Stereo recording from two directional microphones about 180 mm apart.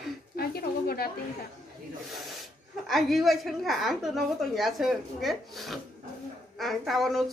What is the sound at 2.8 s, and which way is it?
Speech, centre (ahead or behind).